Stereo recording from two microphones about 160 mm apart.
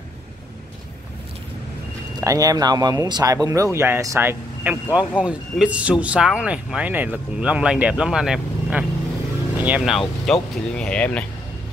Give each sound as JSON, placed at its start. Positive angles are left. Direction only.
{"t": 2.1, "sound": "speech", "side_deg": -20}